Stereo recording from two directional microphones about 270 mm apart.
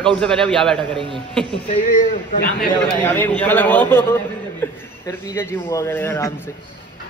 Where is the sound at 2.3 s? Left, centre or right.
Left.